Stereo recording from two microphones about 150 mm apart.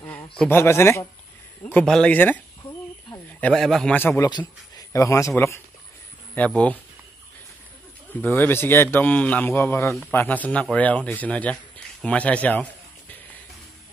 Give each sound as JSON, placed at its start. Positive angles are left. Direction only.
{"t": 0.4, "sound": "a man's voice", "side_deg": 15}
{"t": 4.3, "sound": "a man's voice", "side_deg": 25}
{"t": 8.1, "sound": "a man's voice", "side_deg": 10}